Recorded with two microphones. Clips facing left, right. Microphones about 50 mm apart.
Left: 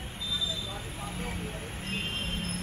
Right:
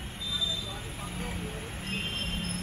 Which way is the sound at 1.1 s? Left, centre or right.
Centre.